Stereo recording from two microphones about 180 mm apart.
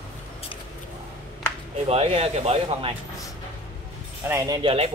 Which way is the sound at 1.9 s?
35° right (ahead or behind).